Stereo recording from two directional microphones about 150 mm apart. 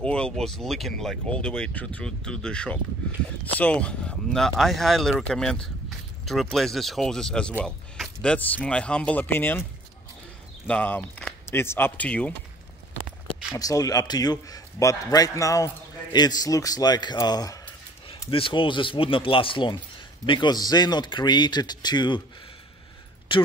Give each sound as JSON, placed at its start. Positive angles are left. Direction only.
{"t": 0.0, "sound": "speech", "side_deg": 5}
{"t": 10.7, "sound": "speech", "side_deg": 10}
{"t": 13.5, "sound": "a man's voice", "side_deg": 25}
{"t": 23.3, "sound": "speech", "side_deg": 35}